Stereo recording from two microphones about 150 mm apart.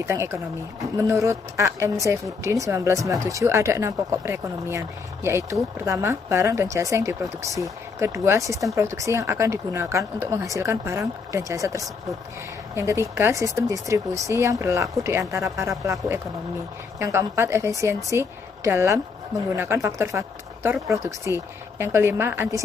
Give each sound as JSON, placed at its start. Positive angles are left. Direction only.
{"t": 0.0, "sound": "a woman's voice", "side_deg": -20}
{"t": 17.0, "sound": "a woman's voice", "side_deg": -20}